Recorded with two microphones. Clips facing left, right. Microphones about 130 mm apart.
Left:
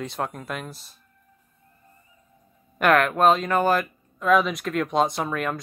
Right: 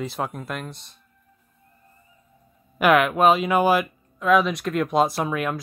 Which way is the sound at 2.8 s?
5° right (ahead or behind).